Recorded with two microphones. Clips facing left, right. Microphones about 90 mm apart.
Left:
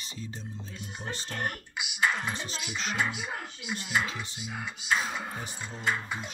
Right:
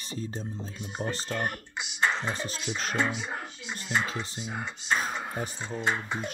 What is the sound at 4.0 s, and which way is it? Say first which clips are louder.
Speech: right 2 dB; 35° right (ahead or behind).